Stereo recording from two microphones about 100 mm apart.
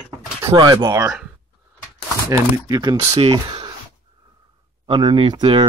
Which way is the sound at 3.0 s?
65° right (ahead or behind).